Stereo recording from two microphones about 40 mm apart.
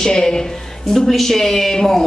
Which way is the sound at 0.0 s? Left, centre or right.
Centre.